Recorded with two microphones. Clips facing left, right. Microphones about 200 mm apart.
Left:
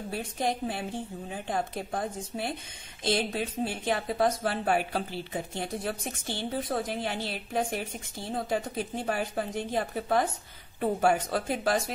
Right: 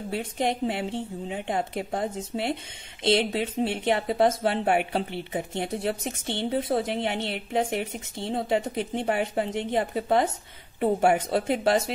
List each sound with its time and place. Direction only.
0.1 s speech: 25° right (ahead or behind)